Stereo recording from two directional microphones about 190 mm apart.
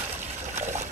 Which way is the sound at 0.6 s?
40° right (ahead or behind).